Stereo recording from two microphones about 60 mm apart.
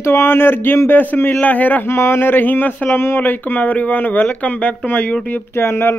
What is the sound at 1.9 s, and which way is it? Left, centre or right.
Speech, left.